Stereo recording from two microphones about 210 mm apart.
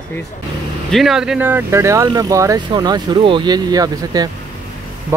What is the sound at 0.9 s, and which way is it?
Speech, centre (ahead or behind).